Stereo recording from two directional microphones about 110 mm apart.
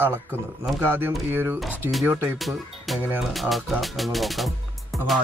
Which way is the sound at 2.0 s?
15° right (ahead or behind).